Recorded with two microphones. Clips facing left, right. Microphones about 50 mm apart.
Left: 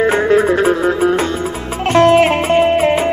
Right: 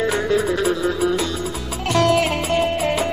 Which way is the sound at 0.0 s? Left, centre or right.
Left.